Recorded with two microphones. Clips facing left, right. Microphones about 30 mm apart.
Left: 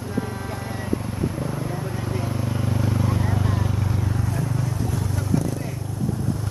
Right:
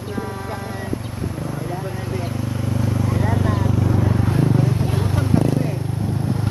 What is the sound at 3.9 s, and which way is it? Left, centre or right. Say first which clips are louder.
Vehicle: right 7 dB; right.